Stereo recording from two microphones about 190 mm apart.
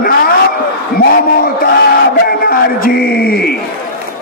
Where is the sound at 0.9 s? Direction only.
50° left (ahead or behind).